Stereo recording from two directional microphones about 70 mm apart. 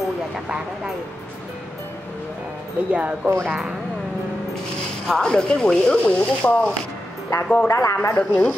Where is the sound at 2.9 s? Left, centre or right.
Right.